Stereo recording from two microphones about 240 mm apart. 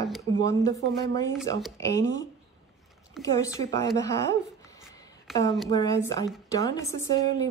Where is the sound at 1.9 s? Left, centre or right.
Centre.